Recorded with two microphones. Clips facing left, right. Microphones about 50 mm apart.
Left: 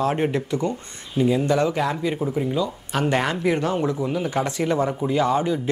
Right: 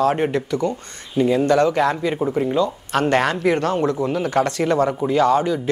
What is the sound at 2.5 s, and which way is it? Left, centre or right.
Speech, centre.